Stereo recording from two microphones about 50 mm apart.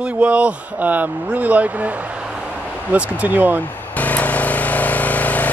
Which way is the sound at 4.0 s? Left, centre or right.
Left.